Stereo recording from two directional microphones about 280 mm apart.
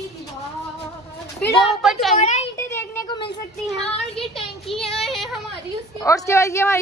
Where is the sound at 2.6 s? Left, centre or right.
Centre.